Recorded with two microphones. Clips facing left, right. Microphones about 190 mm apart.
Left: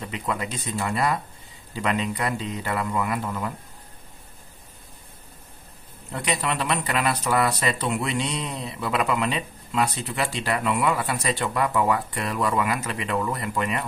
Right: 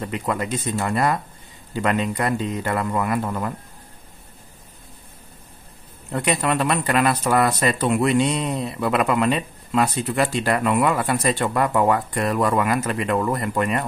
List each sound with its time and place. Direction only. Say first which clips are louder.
0.0 s speech: right 4 dB; 50° right (ahead or behind)
6.1 s speech: right 5 dB; 50° right (ahead or behind)